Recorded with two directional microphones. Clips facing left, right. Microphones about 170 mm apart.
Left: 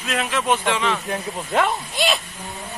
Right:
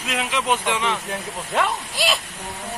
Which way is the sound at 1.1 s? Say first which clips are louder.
Left 3 dB; centre (ahead or behind).